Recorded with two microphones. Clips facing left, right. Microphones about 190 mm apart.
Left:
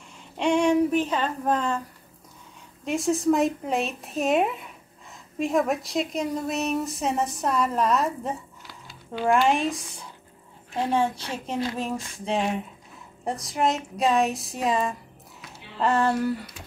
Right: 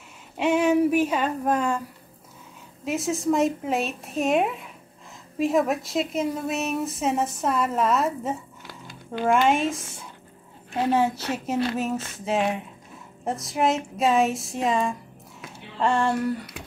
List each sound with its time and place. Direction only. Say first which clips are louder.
0.4 s speech: right 1 dB; 5° right (ahead or behind)
2.8 s a woman's voice: left 2 dB; centre (ahead or behind)
9.5 s a woman's voice: right 1 dB; centre (ahead or behind)
16.6 s a sound: right 5 dB; 60° right (ahead or behind)